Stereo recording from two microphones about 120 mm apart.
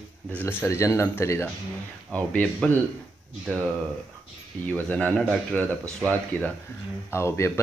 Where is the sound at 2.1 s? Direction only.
10° left (ahead or behind).